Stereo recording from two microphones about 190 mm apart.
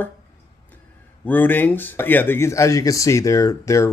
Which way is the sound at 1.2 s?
10° left (ahead or behind).